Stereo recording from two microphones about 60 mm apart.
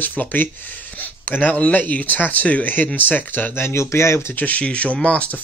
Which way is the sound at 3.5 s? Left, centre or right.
Left.